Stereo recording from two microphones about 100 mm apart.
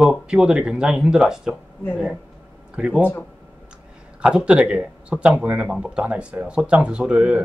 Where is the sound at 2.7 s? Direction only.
10° right (ahead or behind).